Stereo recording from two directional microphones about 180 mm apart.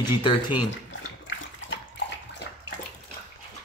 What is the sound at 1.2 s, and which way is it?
Bathtub, 90° left.